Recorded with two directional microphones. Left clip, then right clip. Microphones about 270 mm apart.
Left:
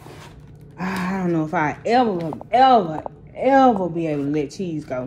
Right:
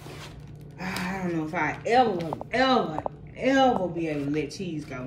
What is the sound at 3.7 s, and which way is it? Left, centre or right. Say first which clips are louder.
Mantra: left 6 dB; left.